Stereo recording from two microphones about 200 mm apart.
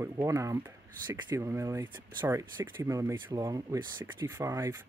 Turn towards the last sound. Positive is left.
turn(degrees=-15)  # may be behind; listen again after turning